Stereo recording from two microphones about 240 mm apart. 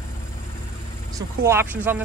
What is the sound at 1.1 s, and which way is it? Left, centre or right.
Speech, centre.